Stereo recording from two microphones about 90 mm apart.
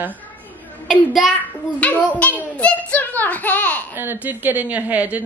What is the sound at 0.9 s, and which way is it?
Speech, centre (ahead or behind).